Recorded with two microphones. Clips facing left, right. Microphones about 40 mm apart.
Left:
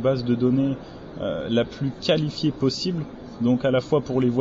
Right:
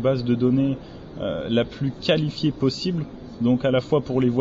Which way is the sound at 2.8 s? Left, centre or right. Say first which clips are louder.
Right 1 dB; centre.